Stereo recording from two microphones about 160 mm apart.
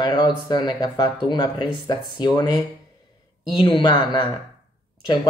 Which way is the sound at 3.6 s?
30° left (ahead or behind).